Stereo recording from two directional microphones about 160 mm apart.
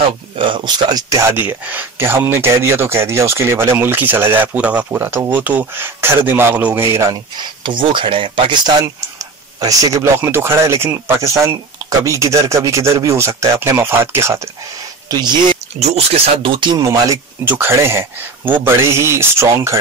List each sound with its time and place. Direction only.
0.4 s speech: 30° right (ahead or behind)
1.3 s speech: 10° right (ahead or behind)
7.6 s speech: 30° right (ahead or behind)
15.0 s speech: 25° right (ahead or behind)
15.8 s speech: 40° right (ahead or behind); by 19.8 s 15° right (ahead or behind)